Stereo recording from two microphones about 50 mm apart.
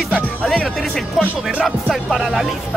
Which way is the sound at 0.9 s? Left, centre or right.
Centre.